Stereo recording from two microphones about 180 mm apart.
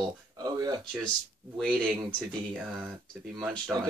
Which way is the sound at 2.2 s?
Centre (ahead or behind).